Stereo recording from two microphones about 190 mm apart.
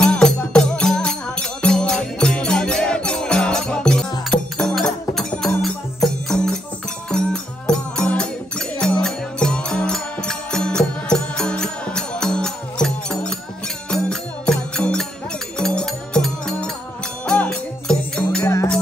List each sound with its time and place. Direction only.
0.0 s music: 5° left (ahead or behind)
18.5 s music: 15° left (ahead or behind)